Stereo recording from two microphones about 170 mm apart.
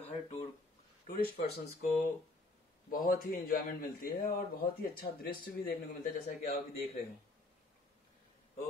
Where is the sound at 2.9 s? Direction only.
55° left (ahead or behind).